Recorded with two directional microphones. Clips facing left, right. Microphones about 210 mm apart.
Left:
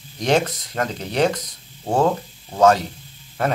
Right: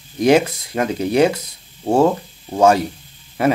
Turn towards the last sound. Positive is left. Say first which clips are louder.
# right 6 dB
turn(degrees=-10)  # may be behind; listen again after turning